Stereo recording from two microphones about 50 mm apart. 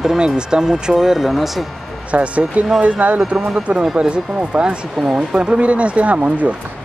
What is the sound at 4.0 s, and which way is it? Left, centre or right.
Speech, right.